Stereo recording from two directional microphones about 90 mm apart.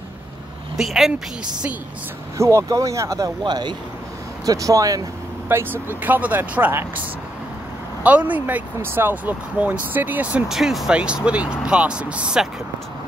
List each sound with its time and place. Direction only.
0.7 s speech: centre (ahead or behind)
2.3 s speech: 35° right (ahead or behind)
3.4 s speech: 55° right (ahead or behind)
4.5 s speech: 40° right (ahead or behind)
5.5 s speech: 20° right (ahead or behind)
8.0 s speech: 15° right (ahead or behind)
10.5 s speech: 5° right (ahead or behind)